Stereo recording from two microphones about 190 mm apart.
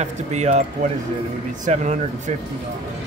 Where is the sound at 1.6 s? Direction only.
40° right (ahead or behind).